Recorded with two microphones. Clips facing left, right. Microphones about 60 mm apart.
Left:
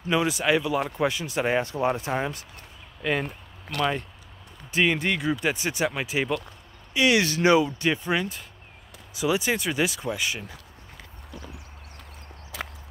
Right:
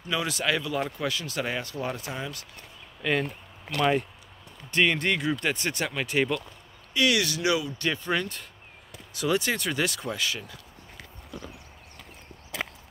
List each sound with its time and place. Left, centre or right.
0.1 s speech: centre
0.9 s speech: left
3.0 s speech: centre
3.7 s speech: centre
4.6 s speech: centre
6.9 s speech: left
7.8 s speech: centre